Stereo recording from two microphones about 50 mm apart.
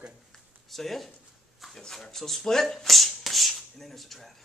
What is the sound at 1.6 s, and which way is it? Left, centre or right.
Speech, centre.